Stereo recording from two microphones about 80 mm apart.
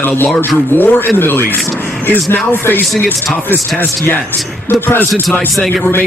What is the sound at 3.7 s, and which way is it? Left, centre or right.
Speech, left.